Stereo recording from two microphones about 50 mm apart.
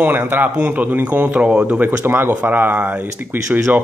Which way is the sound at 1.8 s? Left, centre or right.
Right.